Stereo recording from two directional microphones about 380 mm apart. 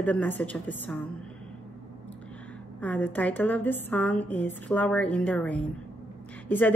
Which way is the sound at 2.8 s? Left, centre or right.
Centre.